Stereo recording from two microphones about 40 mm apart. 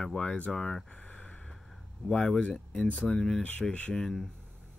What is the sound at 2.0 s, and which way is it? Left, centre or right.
Speech, left.